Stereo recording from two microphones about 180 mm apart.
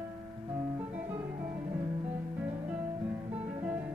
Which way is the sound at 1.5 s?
30° right (ahead or behind).